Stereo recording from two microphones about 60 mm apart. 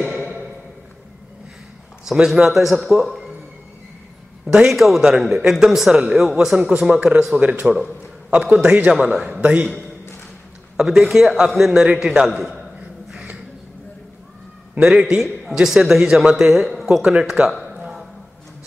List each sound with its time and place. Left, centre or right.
2.2 s a man's voice: centre
4.5 s a man's voice: centre; by 9.7 s right
10.8 s a man's voice: centre
12.3 s a man's voice: centre
13.1 s a sound: right
14.8 s a man's voice: centre